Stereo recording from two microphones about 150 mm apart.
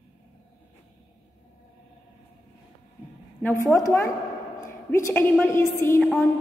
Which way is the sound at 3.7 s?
20° left (ahead or behind).